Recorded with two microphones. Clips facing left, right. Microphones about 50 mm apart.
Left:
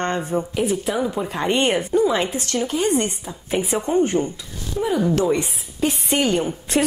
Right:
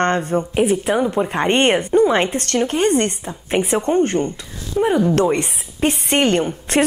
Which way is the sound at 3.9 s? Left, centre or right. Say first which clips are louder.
Right 2 dB; right.